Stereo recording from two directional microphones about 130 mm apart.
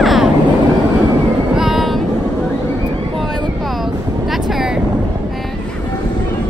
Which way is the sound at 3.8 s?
Centre (ahead or behind).